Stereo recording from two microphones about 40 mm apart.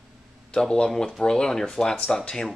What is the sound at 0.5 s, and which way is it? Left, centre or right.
Speech, left.